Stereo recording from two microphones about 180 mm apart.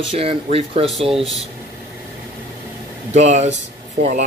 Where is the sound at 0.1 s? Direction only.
30° right (ahead or behind).